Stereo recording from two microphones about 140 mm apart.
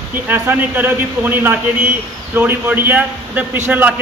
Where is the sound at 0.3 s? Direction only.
15° right (ahead or behind).